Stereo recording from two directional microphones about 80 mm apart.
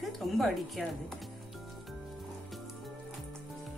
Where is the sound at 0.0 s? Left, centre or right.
Centre.